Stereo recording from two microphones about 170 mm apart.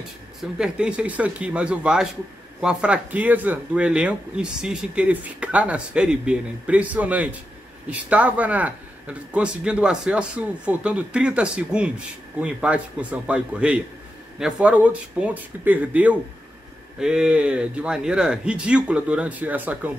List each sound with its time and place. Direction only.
0.4 s speech: 5° right (ahead or behind)